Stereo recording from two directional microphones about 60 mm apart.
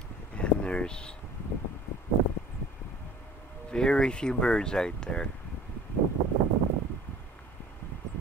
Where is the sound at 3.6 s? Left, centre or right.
Centre.